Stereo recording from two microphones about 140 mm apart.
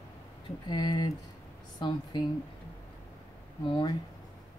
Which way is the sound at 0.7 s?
35° left (ahead or behind).